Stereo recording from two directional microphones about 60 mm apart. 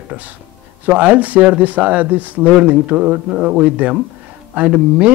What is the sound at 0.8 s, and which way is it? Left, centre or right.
Speech, right.